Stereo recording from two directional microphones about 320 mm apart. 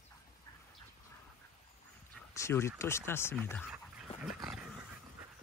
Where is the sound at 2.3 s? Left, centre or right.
Centre.